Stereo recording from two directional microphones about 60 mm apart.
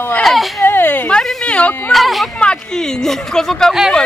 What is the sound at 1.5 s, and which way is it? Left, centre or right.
Speech, left.